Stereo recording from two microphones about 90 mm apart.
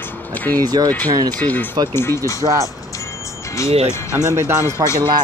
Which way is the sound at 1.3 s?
20° left (ahead or behind).